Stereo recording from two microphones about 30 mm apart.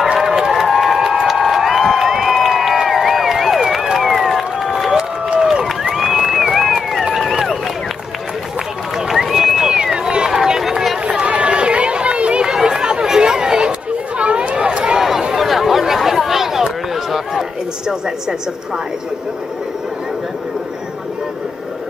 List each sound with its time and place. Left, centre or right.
0.2 s crowd: centre
4.2 s run: centre
5.4 s run: right
5.9 s run: centre
8.9 s run: centre
9.3 s a sound: centre
9.9 s run: right
10.6 s run: centre
11.1 s run: right
12.6 s chatter: right
13.2 s a sound: right
13.7 s chatter: right
15.0 s a sound: centre